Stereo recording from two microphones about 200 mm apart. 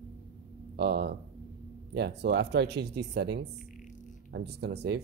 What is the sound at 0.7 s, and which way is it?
Speech, 55° right (ahead or behind).